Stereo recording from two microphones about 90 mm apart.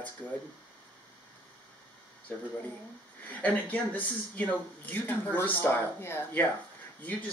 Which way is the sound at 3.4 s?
15° left (ahead or behind).